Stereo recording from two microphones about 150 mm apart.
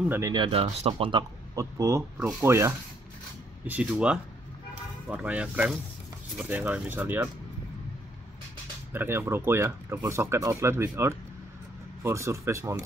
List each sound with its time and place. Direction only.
0.3 s speech: 35° right (ahead or behind)
1.5 s speech: 20° right (ahead or behind)
8.9 s speech: 15° right (ahead or behind)